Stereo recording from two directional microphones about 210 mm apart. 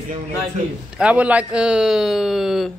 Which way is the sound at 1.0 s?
5° right (ahead or behind).